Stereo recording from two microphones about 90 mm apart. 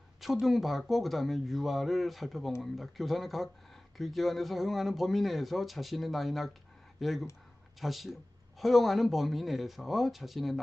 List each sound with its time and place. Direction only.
0.2 s speech: 5° right (ahead or behind)